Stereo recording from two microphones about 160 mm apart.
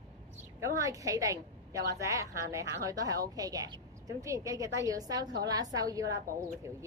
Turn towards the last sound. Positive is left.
turn(degrees=-20)  # may be behind; listen again after turning